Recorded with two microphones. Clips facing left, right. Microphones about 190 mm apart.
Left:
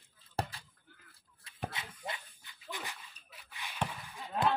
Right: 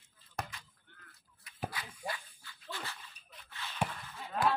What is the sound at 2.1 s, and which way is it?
Dog, 20° left (ahead or behind).